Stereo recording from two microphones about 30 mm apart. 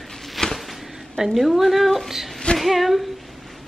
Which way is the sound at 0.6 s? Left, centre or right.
Centre.